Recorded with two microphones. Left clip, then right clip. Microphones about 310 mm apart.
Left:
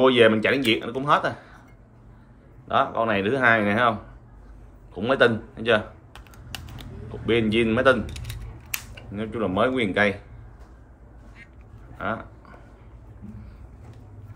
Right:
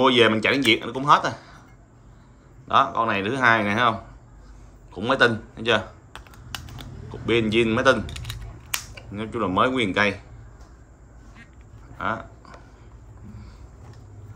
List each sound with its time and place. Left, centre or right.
0.0 s speech: centre
2.7 s speech: centre
4.9 s computer keyboard: centre
8.9 s speech: centre
12.0 s speech: centre